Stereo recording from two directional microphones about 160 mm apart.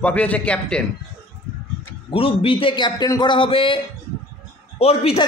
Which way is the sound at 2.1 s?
35° left (ahead or behind).